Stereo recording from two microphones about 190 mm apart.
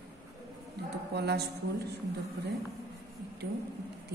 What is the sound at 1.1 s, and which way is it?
Speech, 60° right (ahead or behind).